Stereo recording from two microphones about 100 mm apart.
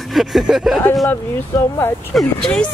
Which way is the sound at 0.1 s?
Centre (ahead or behind).